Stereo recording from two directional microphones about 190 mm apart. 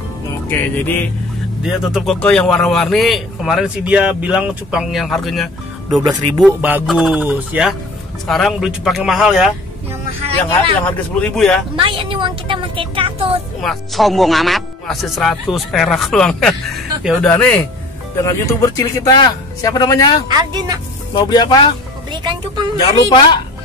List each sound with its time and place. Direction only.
0.5 s speech: 10° left (ahead or behind)
1.6 s a man's voice: centre (ahead or behind)
10.9 s a man's voice: 5° left (ahead or behind)
11.7 s speech: 25° right (ahead or behind)
13.6 s a man's voice: centre (ahead or behind); by 20.2 s 25° left (ahead or behind)
20.2 s speech: 20° right (ahead or behind)
21.1 s speech: 20° left (ahead or behind)
22.1 s speech: 25° right (ahead or behind)
22.8 s speech: 25° left (ahead or behind)